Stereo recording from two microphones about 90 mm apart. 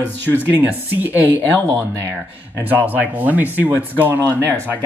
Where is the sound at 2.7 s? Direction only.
20° right (ahead or behind).